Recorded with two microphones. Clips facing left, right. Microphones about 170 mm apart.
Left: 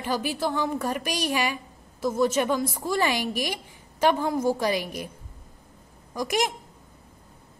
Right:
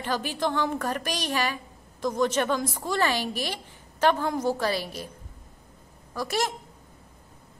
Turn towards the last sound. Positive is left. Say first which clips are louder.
# left 2 dB
turn(degrees=15)  # may be behind; listen again after turning